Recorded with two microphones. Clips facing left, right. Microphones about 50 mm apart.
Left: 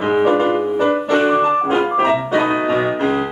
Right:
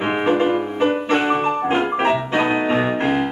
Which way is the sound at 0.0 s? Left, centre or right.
Right.